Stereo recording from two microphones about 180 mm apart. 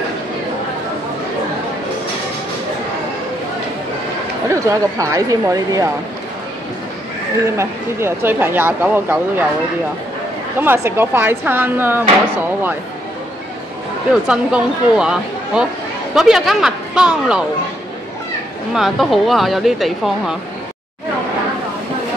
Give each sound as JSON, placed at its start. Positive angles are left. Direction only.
{"t": 4.5, "sound": "speech", "side_deg": -20}
{"t": 7.4, "sound": "speech", "side_deg": -15}
{"t": 10.6, "sound": "speech", "side_deg": -10}
{"t": 14.2, "sound": "speech", "side_deg": -5}
{"t": 18.8, "sound": "speech", "side_deg": 0}